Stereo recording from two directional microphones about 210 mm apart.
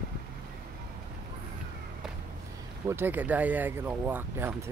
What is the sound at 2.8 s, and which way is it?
Speech, 10° right (ahead or behind).